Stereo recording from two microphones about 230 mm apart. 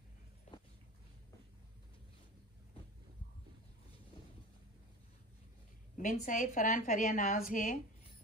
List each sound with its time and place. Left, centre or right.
5.9 s a woman's voice: left